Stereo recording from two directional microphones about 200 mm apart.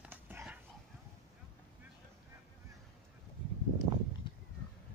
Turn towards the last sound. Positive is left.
turn(degrees=25)  # may be behind; listen again after turning